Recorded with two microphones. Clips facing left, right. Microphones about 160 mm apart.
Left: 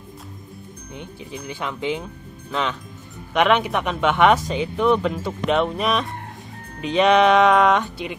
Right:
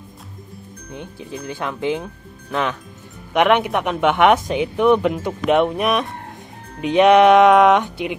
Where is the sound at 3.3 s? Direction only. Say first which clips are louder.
Right 2 dB; 15° right (ahead or behind).